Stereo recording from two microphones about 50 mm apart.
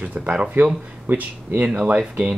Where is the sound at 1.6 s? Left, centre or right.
Right.